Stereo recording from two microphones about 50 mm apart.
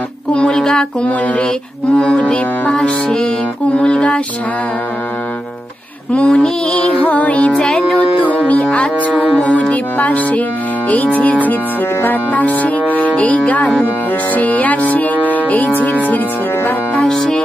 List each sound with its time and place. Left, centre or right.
0.3 s a sound: centre
1.0 s music: left
6.1 s music: left
7.6 s music: centre
8.3 s music: left
17.1 s music: centre